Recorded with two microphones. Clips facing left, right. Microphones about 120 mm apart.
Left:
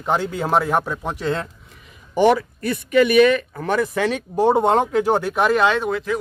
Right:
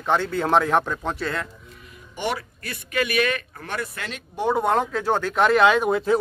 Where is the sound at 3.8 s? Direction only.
90° left.